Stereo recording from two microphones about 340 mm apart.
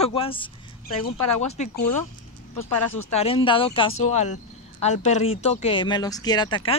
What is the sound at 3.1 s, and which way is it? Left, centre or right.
Speech, centre.